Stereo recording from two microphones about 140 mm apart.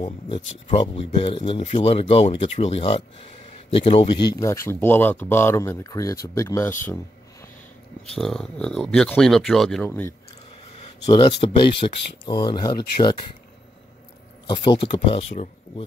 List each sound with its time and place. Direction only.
0.3 s speech: 40° left (ahead or behind)
4.2 s speech: 25° left (ahead or behind)
8.0 s speech: centre (ahead or behind)
9.8 s speech: 15° left (ahead or behind)
11.1 s speech: 35° left (ahead or behind)
14.5 s speech: 35° left (ahead or behind)